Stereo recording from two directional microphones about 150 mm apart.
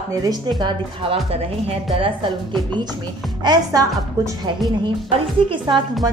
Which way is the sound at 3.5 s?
25° right (ahead or behind).